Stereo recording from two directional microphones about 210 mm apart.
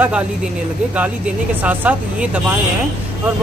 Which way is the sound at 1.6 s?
5° right (ahead or behind).